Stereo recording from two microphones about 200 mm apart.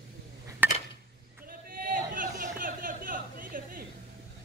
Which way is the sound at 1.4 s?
45° right (ahead or behind).